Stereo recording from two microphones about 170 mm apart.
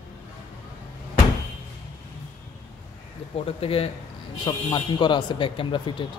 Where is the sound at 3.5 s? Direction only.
35° left (ahead or behind).